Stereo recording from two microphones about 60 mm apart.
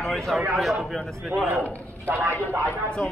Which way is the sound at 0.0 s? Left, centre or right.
Centre.